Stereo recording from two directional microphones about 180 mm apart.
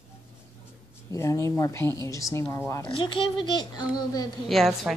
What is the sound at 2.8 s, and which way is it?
Speech, 30° left (ahead or behind).